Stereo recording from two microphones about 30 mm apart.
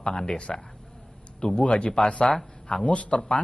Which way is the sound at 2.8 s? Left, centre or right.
Left.